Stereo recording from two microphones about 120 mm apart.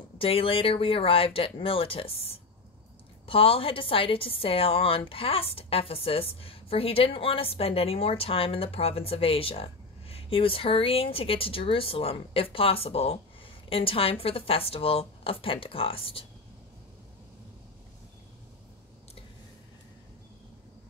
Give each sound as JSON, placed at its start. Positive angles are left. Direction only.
{"t": 0.2, "sound": "a woman's voice", "side_deg": 50}